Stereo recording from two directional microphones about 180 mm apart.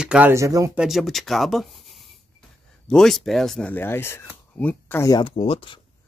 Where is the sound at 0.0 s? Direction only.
5° right (ahead or behind).